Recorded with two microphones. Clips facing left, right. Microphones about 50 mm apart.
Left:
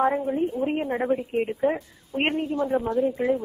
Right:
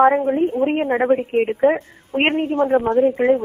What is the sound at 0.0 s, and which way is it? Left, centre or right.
Speech, right.